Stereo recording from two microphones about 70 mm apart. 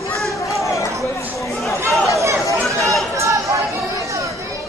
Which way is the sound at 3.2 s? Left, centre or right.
Right.